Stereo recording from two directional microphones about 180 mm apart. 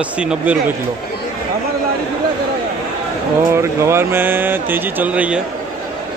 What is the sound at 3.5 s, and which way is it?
Speech, 15° right (ahead or behind).